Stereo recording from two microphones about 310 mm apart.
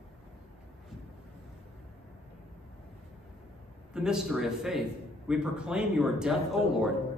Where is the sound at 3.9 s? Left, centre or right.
Centre.